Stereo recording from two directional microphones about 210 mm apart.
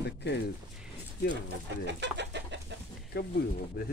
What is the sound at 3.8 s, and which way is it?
Speech, 45° left (ahead or behind).